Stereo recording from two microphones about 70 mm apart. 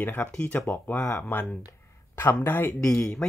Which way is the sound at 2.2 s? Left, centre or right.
Left.